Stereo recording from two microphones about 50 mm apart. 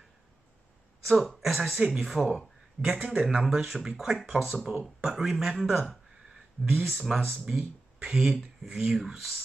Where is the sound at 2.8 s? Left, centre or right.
Right.